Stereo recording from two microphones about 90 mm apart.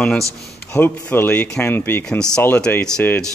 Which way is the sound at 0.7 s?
25° left (ahead or behind).